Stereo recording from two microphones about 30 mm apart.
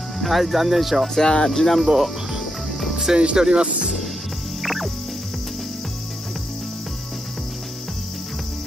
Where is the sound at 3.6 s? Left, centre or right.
Right.